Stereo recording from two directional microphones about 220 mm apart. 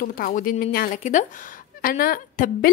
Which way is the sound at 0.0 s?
40° left (ahead or behind).